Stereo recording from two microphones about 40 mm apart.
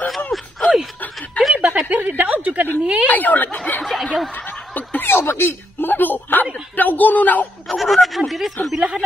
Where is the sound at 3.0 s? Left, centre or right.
Left.